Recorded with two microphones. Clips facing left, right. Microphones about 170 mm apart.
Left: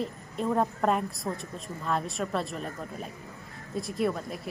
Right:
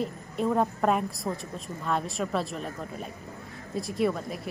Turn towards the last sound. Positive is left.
turn(degrees=0)  # may be behind; listen again after turning